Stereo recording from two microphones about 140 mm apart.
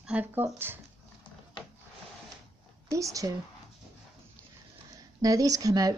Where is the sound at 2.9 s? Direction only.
25° right (ahead or behind).